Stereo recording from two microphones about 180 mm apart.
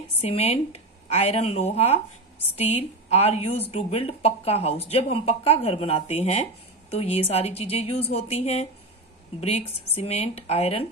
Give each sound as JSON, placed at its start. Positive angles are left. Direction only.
{"t": 0.2, "sound": "a woman's voice", "side_deg": 35}